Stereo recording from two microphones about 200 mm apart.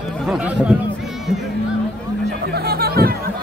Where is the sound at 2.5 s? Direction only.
50° right (ahead or behind).